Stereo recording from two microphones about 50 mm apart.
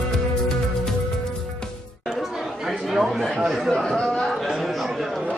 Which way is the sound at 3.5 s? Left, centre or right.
Centre.